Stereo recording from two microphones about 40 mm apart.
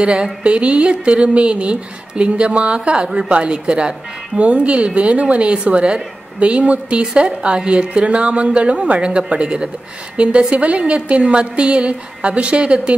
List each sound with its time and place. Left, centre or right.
0.0 s speech: right
7.2 s speech: centre